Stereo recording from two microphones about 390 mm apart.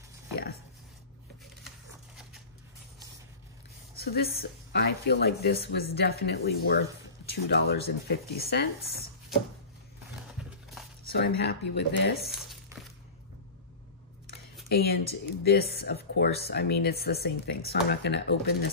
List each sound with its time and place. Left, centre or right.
3.9 s speech: left
11.1 s speech: left
14.2 s speech: left